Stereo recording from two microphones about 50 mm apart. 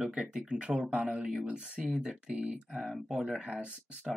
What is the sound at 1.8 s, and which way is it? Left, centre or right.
Speech, centre.